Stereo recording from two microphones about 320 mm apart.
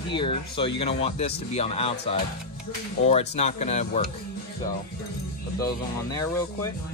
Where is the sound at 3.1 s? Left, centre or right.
Left.